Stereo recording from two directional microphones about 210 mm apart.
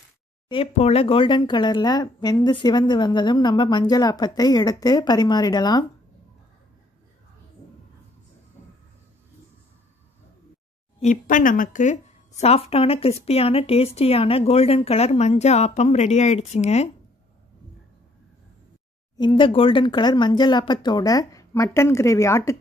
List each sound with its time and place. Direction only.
0.5 s a woman's voice: 30° left (ahead or behind)
11.0 s a woman's voice: 35° left (ahead or behind)
19.1 s a woman's voice: 20° left (ahead or behind)